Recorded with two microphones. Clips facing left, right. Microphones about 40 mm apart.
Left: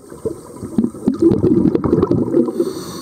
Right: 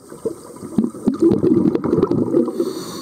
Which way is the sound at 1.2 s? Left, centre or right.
Centre.